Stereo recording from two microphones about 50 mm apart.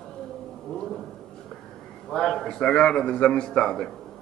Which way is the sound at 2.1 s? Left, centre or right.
Centre.